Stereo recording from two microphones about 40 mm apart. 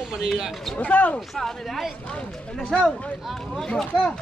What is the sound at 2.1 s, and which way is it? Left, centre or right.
Speech, left.